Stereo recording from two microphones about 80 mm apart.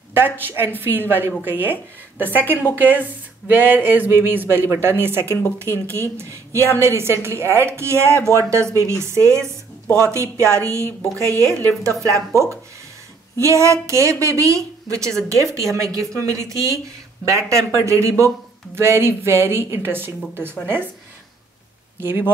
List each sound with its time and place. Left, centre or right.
0.1 s a woman's voice: right
10.4 s a woman's voice: right
13.4 s a woman's voice: right
22.0 s speech: right